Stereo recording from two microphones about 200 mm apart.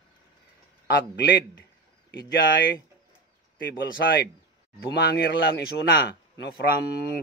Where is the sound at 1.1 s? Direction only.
60° left (ahead or behind).